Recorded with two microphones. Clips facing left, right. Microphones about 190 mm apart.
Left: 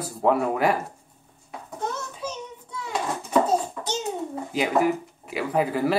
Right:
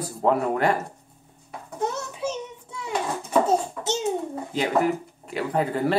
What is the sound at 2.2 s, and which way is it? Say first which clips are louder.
Child singing: right 4 dB; 25° right (ahead or behind).